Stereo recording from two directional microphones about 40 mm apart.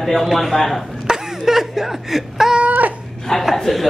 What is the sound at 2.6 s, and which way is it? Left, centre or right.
Wail, right.